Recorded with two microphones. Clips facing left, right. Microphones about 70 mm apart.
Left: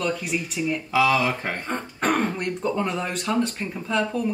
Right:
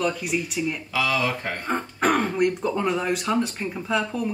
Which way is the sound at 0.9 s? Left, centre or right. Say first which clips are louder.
Left 5 dB; left.